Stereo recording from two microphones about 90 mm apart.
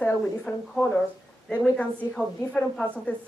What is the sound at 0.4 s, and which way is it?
A woman's voice, 10° left (ahead or behind).